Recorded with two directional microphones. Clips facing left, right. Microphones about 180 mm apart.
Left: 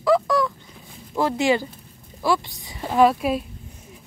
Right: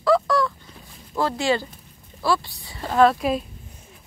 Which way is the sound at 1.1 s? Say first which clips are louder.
Left 2 dB; 15° left (ahead or behind).